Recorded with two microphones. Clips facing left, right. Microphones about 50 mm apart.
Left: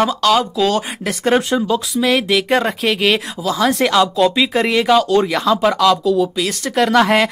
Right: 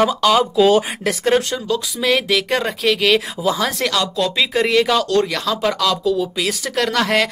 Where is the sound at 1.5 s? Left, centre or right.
Centre.